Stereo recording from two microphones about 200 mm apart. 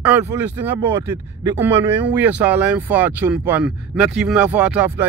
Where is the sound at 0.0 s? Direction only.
10° right (ahead or behind).